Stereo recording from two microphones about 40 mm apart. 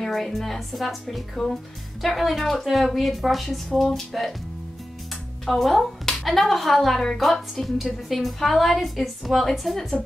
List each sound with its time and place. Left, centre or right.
0.0 s a woman's voice: centre
5.4 s a woman's voice: centre